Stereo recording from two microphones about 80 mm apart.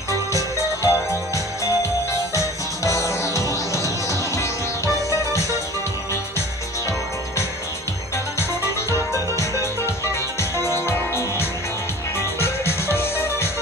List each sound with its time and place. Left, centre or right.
0.8 s music: left
8.9 s music: left